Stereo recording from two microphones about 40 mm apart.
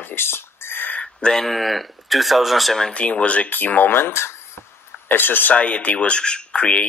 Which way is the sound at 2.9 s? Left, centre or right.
Left.